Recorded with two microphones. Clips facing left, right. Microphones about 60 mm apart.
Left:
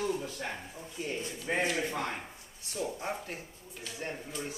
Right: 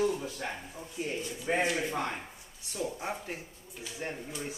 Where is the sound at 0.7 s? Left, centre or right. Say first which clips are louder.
Right 1 dB; centre.